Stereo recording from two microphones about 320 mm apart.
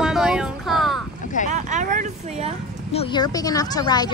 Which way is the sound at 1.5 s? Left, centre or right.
Right.